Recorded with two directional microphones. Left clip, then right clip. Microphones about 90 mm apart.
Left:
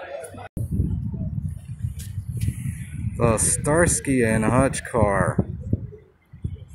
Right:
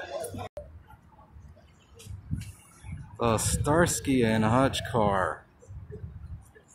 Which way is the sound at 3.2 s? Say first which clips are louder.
Left 5 dB; 25° left (ahead or behind).